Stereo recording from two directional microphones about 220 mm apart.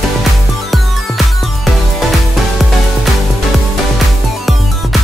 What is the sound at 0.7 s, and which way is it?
Music, centre (ahead or behind).